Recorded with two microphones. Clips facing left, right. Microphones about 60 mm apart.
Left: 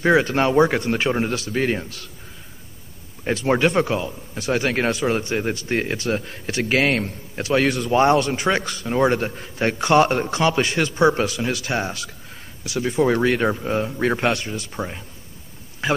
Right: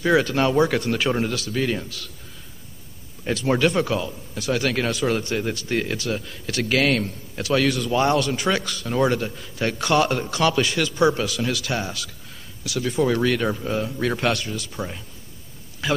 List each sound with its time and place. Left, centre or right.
0.0 s a man's voice: left
3.3 s a man's voice: left
6.5 s a man's voice: left